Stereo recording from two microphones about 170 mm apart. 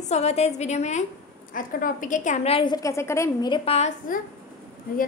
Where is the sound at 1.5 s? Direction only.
55° left (ahead or behind); by 3.3 s 15° left (ahead or behind).